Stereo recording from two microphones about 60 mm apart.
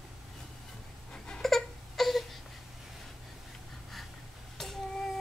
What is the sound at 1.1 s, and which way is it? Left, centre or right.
Crying, centre.